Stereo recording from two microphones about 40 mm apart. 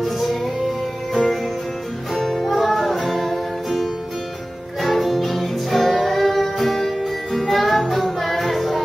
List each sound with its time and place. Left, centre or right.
0.0 s music: centre
4.8 s music: centre